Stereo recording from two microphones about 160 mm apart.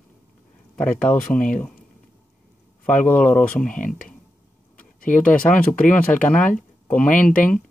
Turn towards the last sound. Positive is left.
turn(degrees=55)  # may be behind; listen again after turning